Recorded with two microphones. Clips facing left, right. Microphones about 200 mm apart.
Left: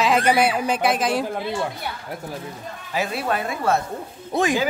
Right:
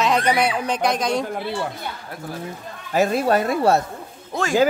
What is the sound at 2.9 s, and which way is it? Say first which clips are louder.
Speech: right 6 dB; 40° right (ahead or behind).